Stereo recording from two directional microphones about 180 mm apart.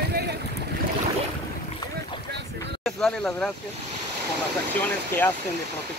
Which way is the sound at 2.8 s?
5° left (ahead or behind).